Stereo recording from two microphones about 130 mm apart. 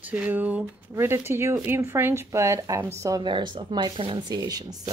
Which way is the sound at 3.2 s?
35° right (ahead or behind).